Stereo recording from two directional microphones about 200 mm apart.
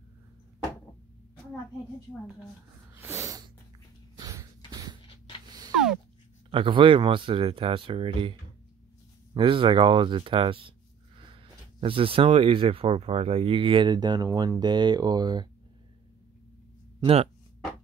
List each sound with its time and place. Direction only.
2.9 s snort: 10° right (ahead or behind)
4.2 s a sound: 15° right (ahead or behind)
5.0 s a sound: 25° left (ahead or behind)
6.5 s speech: 25° right (ahead or behind)
11.8 s speech: 25° right (ahead or behind)
17.0 s speech: 30° right (ahead or behind)